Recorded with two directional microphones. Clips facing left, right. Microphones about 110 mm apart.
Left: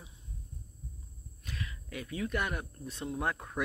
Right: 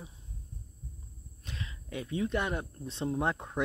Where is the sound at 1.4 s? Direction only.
25° right (ahead or behind).